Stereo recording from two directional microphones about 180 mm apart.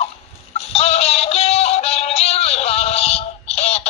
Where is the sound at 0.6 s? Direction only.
35° left (ahead or behind).